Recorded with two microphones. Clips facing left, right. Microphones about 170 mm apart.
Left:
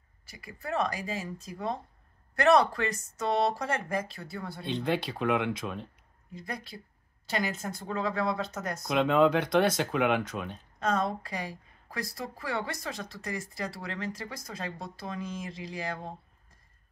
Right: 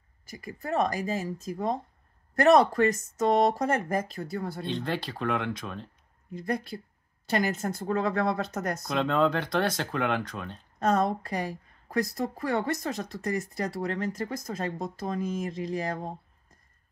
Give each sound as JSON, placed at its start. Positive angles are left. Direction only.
{"t": 0.3, "sound": "speech", "side_deg": -45}
{"t": 4.6, "sound": "speech", "side_deg": 5}
{"t": 6.3, "sound": "speech", "side_deg": -50}
{"t": 8.8, "sound": "speech", "side_deg": 5}
{"t": 10.8, "sound": "speech", "side_deg": -45}